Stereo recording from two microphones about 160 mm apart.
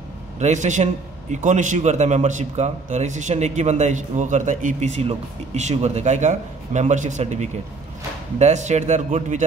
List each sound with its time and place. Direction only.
0.4 s a man's voice: 50° right (ahead or behind)